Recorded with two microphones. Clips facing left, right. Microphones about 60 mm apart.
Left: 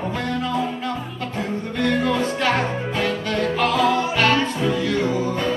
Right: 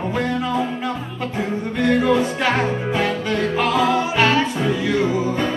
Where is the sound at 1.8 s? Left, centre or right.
Centre.